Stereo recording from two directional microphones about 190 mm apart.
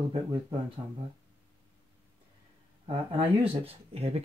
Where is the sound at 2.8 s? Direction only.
30° right (ahead or behind).